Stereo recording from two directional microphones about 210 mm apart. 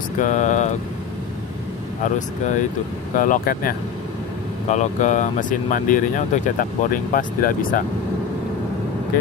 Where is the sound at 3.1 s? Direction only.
40° left (ahead or behind).